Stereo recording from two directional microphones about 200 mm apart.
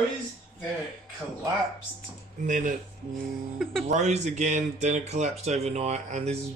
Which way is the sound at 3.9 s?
35° right (ahead or behind).